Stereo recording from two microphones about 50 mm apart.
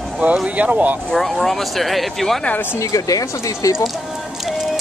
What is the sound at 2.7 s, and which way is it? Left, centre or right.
Speech, left.